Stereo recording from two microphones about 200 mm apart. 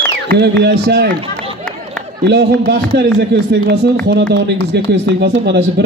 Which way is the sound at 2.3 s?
55° right (ahead or behind).